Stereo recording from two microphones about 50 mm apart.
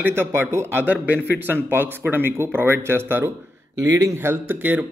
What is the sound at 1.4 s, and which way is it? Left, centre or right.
Speech, right.